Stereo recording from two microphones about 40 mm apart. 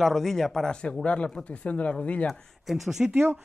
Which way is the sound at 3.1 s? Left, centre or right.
Right.